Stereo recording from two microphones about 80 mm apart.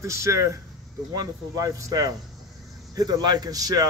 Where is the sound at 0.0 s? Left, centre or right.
Right.